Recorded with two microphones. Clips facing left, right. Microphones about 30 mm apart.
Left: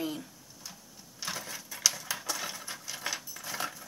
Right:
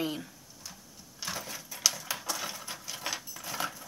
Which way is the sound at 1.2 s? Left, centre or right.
Centre.